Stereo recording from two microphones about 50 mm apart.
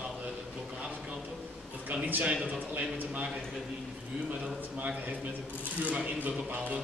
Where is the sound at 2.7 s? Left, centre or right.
Right.